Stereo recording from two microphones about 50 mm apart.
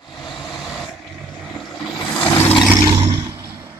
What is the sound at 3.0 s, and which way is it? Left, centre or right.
Vehicle, right.